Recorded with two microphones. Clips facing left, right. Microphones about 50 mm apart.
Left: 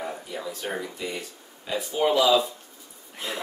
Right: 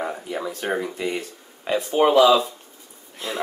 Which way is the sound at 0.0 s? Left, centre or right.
Right.